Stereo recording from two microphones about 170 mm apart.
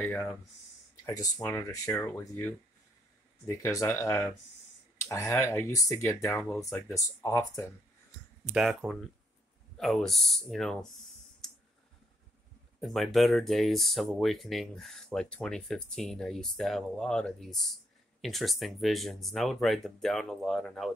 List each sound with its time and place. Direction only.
0.0 s speech: 10° left (ahead or behind)
8.5 s speech: centre (ahead or behind)
11.4 s clicking: centre (ahead or behind)
12.8 s speech: centre (ahead or behind)